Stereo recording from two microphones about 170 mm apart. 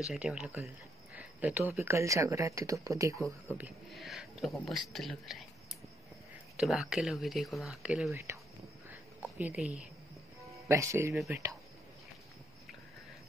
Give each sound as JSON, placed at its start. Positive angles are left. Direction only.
{"t": 0.0, "sound": "speech", "side_deg": -5}
{"t": 1.1, "sound": "a sound", "side_deg": -10}
{"t": 1.8, "sound": "speech", "side_deg": -15}
{"t": 3.5, "sound": "speech", "side_deg": -5}
{"t": 6.5, "sound": "speech", "side_deg": -5}
{"t": 9.4, "sound": "speech", "side_deg": -10}
{"t": 10.7, "sound": "speech", "side_deg": -15}